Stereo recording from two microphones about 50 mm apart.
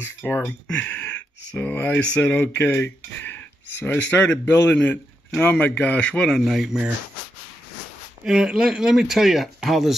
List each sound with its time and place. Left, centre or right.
0.0 s speech: left
0.5 s a sound: left
1.6 s speech: left
2.0 s a man's voice: left
2.3 s a man's voice: left
6.4 s speech: centre
8.3 s speech: centre